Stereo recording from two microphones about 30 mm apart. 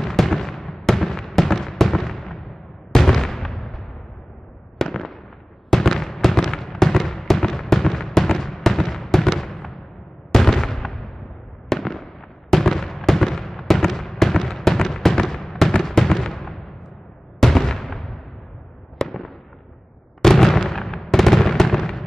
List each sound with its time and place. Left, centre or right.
0.0 s a sound: centre
0.8 s fireworks: centre
4.7 s fireworks: centre
17.4 s artillery fire: centre
18.9 s fireworks: centre